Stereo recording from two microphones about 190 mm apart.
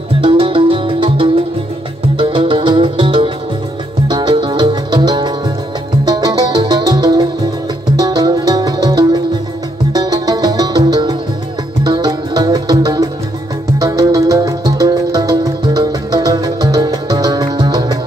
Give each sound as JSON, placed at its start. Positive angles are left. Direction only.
{"t": 0.2, "sound": "music", "side_deg": -30}